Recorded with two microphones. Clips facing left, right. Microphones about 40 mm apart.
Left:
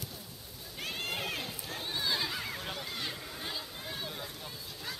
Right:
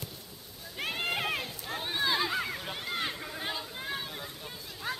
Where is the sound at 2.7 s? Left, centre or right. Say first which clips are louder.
Right 4 dB; right.